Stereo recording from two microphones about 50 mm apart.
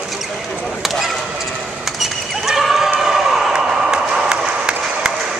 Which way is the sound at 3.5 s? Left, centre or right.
Centre.